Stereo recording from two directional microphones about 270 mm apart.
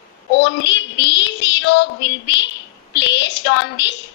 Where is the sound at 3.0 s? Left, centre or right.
Left.